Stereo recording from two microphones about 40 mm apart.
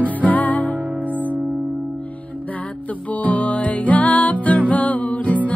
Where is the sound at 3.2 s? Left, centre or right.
Left.